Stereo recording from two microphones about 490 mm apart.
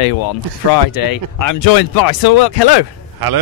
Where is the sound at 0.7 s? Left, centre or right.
Left.